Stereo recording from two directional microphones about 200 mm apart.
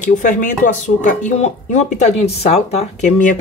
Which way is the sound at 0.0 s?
40° left (ahead or behind).